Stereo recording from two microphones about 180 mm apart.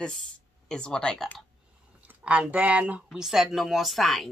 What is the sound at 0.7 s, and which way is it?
Speech, 5° left (ahead or behind).